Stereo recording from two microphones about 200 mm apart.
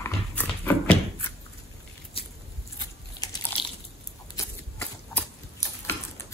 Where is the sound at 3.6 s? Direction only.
25° left (ahead or behind).